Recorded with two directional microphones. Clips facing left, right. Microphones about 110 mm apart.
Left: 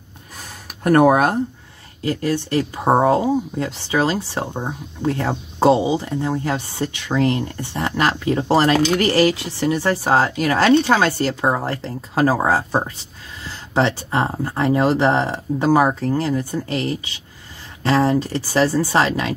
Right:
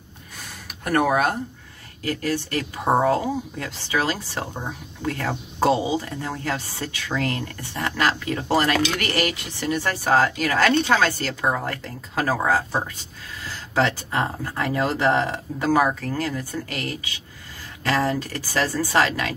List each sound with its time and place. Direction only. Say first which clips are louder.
0.8 s speech: left 7 dB; 40° left (ahead or behind)
2.0 s speech: left 4 dB; 25° left (ahead or behind)